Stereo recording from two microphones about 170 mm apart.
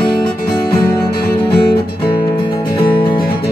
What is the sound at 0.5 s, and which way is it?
Music, 25° left (ahead or behind).